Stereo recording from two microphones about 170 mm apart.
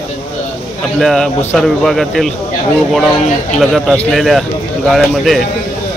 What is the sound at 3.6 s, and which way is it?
A man's voice, centre (ahead or behind).